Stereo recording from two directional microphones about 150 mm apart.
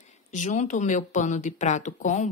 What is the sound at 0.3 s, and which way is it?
Speech, 55° left (ahead or behind).